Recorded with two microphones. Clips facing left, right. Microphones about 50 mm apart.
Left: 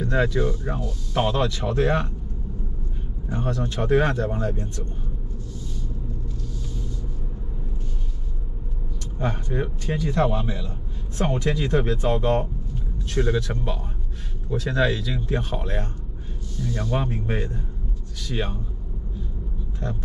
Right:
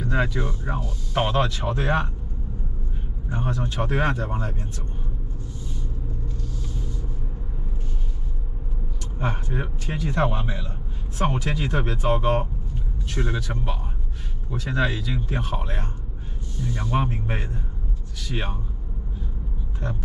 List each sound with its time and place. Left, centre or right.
0.0 s a man's voice: centre
3.3 s a man's voice: right
9.2 s a man's voice: centre